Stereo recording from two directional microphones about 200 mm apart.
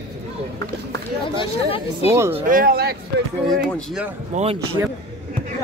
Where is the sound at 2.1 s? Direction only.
15° right (ahead or behind).